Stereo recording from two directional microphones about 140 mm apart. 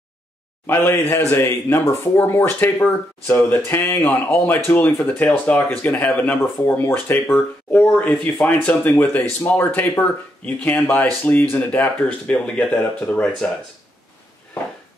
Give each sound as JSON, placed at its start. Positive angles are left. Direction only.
{"t": 0.7, "sound": "speech", "side_deg": 15}